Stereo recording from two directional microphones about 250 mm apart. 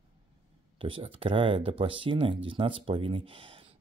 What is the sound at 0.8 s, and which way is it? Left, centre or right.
Speech, right.